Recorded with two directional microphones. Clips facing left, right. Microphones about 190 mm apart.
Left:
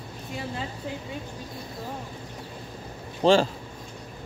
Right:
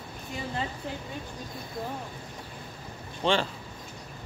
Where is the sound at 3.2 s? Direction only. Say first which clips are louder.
Left 7 dB; 40° left (ahead or behind).